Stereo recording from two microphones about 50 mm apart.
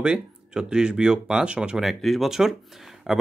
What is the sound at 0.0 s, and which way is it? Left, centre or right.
Speech, centre.